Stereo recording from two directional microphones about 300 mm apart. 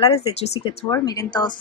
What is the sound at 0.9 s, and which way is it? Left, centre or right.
Speech, centre.